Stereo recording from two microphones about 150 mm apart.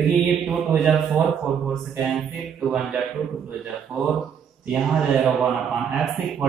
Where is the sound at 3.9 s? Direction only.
20° right (ahead or behind).